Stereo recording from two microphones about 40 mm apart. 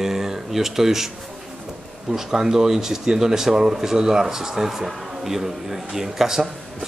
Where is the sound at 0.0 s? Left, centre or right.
Centre.